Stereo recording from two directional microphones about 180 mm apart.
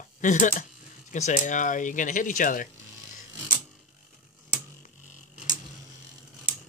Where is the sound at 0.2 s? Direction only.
45° left (ahead or behind).